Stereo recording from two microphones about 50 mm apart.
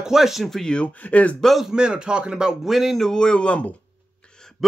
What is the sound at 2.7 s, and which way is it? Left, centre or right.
Speech, centre.